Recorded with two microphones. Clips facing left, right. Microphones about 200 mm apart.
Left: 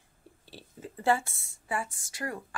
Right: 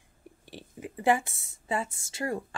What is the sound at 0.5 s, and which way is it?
Speech, 15° right (ahead or behind).